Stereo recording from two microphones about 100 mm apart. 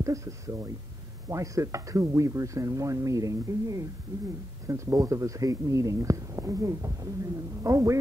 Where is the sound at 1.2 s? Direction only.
30° right (ahead or behind).